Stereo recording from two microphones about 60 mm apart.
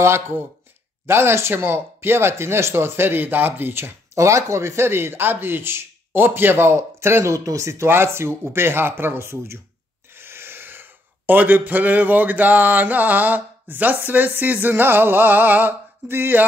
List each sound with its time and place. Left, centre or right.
0.0 s speech: right
4.1 s speech: right
7.3 s speech: right
7.9 s speech: right